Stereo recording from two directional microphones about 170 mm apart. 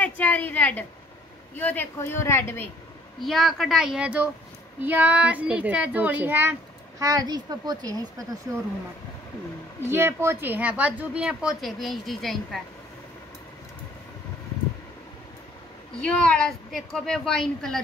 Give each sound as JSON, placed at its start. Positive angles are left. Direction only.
{"t": 0.0, "sound": "a sound", "side_deg": 10}
{"t": 1.5, "sound": "speech", "side_deg": 10}
{"t": 3.2, "sound": "a woman's voice", "side_deg": 0}
{"t": 9.8, "sound": "a woman's voice", "side_deg": -15}
{"t": 16.0, "sound": "a woman's voice", "side_deg": 5}